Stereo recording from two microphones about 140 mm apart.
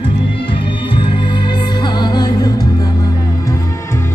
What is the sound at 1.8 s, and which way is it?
Music, 30° left (ahead or behind).